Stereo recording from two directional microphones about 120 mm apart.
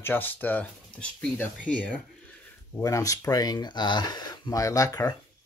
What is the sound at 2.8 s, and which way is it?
Speech, 30° left (ahead or behind).